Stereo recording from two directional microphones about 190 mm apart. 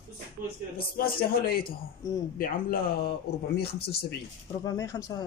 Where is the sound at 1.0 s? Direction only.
55° left (ahead or behind).